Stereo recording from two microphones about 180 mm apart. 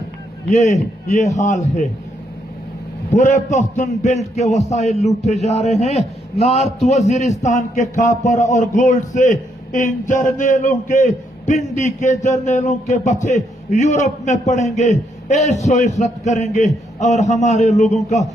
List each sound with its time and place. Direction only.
0.5 s a man's voice: 40° left (ahead or behind)
3.1 s a man's voice: 45° left (ahead or behind)